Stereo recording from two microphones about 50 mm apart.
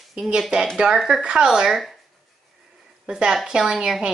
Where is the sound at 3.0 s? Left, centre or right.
Centre.